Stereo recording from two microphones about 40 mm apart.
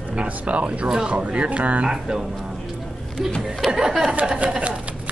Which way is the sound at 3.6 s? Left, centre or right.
Centre.